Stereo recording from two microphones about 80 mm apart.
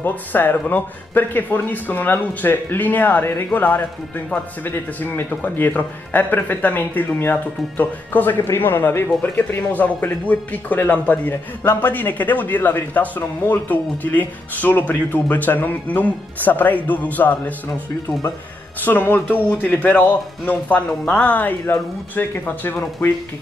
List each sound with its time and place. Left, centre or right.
0.0 s speech: left
18.8 s speech: left